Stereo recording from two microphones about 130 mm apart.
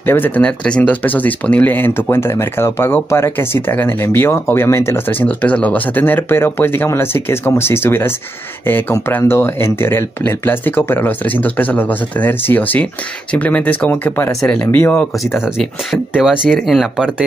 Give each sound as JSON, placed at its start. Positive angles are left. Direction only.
{"t": 0.0, "sound": "speech", "side_deg": 15}
{"t": 16.2, "sound": "speech", "side_deg": 0}